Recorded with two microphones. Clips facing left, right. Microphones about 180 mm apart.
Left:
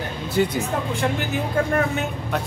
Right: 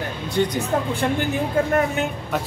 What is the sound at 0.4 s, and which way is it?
Speech, 5° left (ahead or behind).